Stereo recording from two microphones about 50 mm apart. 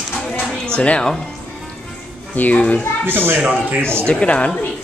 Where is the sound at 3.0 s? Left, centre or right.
Right.